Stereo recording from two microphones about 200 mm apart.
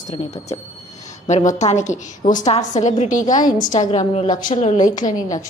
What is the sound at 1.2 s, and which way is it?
A woman's voice, 35° left (ahead or behind).